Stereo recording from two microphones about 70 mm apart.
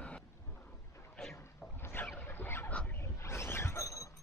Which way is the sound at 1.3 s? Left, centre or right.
Left.